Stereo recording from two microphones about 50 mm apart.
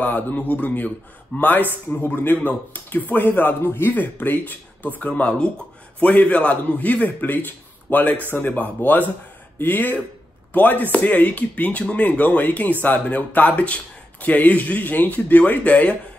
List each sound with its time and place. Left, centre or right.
0.0 s speech: left
1.3 s a man's voice: left